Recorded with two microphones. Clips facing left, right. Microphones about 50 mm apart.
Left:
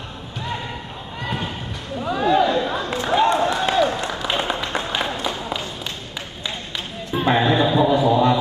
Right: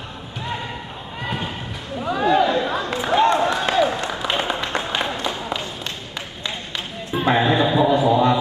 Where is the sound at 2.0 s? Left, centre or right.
Centre.